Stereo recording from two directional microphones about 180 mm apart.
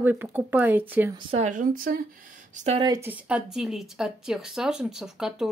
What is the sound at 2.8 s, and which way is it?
Speech, 20° right (ahead or behind).